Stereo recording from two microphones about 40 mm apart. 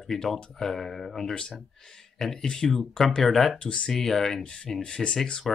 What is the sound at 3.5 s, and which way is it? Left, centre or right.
Speech, left.